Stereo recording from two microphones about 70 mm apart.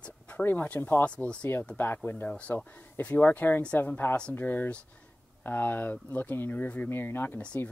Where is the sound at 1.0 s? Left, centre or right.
Centre.